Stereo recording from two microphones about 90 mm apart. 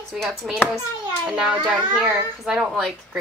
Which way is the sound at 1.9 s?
5° right (ahead or behind).